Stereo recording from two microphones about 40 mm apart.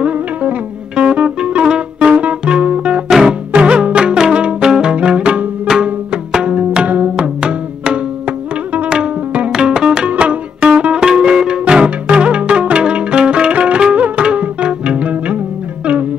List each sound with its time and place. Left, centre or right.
0.0 s music: right
4.9 s music: right